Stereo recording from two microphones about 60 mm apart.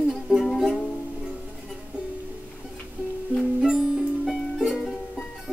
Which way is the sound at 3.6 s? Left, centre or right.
Centre.